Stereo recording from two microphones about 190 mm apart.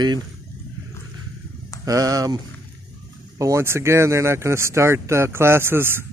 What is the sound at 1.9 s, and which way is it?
Speech, 20° right (ahead or behind).